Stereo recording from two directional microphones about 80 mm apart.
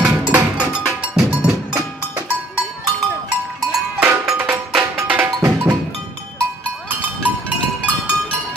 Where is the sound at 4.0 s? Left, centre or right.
Centre.